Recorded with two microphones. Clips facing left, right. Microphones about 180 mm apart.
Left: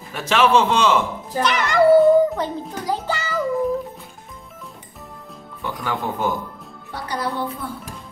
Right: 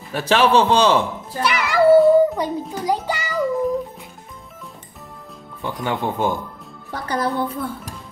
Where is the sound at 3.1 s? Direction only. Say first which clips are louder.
Right 1 dB; 15° right (ahead or behind).